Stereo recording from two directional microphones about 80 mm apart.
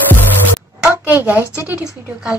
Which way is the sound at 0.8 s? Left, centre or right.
Right.